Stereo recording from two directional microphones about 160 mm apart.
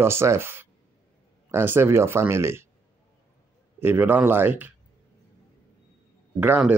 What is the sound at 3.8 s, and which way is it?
Speech, 15° right (ahead or behind).